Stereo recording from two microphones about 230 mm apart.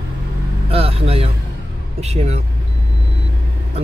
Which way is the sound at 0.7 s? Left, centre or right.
Right.